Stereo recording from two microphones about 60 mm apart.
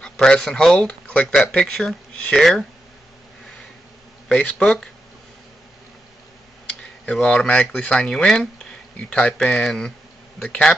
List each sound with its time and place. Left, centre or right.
0.0 s speech: centre
0.7 s speech: centre
4.3 s speech: left
6.8 s speech: centre